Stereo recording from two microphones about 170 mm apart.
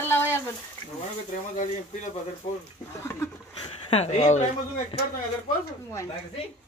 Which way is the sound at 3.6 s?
35° left (ahead or behind).